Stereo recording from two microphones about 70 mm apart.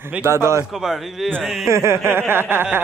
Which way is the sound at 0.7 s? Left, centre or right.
Centre.